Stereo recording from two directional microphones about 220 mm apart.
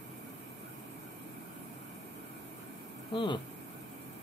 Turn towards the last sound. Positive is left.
turn(degrees=20)  # may be behind; listen again after turning